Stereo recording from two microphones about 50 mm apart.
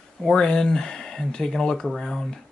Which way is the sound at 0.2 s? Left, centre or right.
Centre.